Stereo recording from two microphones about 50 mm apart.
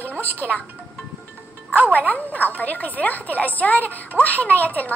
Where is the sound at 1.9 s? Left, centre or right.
Left.